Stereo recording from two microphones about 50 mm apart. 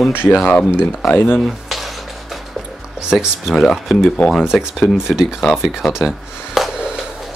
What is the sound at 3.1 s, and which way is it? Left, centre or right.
Speech, centre.